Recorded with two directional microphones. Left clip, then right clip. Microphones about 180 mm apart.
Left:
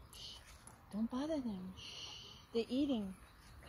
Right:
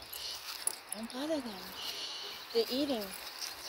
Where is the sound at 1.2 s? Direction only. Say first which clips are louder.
Right 6 dB; 55° left (ahead or behind).